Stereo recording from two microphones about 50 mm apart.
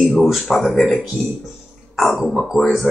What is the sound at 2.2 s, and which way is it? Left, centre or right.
Speech, centre.